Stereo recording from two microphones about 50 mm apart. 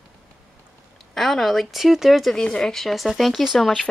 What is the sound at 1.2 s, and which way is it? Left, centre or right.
Speech, centre.